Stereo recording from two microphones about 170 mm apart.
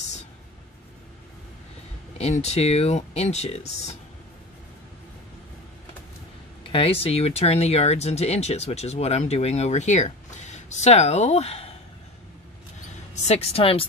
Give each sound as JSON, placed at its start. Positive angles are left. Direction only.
{"t": 2.1, "sound": "speech", "side_deg": 40}
{"t": 6.7, "sound": "speech", "side_deg": 35}
{"t": 13.1, "sound": "speech", "side_deg": 40}